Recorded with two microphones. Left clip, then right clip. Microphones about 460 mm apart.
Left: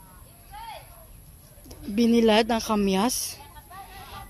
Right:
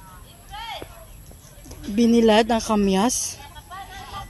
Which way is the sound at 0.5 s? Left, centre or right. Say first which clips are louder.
Right 6 dB; left.